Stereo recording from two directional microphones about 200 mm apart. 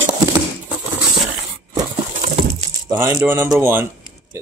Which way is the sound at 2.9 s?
15° right (ahead or behind).